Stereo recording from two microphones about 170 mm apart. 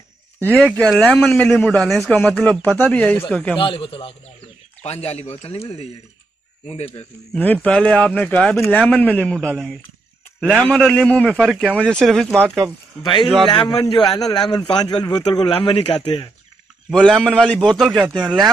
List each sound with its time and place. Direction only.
0.7 s a man's voice: 5° left (ahead or behind)
3.5 s speech: 30° left (ahead or behind)
7.3 s a man's voice: 10° left (ahead or behind)
13.0 s a man's voice: 25° left (ahead or behind)
16.9 s speech: centre (ahead or behind)